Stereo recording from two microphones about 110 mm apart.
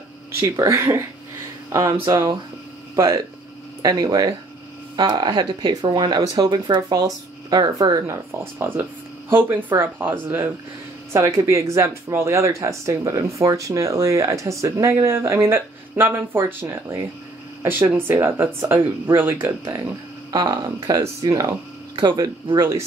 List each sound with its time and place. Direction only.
0.3 s speech: 25° right (ahead or behind)
3.8 s speech: 35° right (ahead or behind)
4.9 s speech: 45° right (ahead or behind)
8.5 s speech: 20° right (ahead or behind)
20.3 s speech: 45° right (ahead or behind)
21.0 s speech: 30° right (ahead or behind)